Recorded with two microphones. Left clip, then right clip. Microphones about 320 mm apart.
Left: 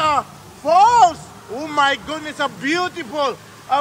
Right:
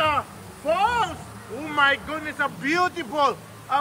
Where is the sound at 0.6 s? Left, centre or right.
Centre.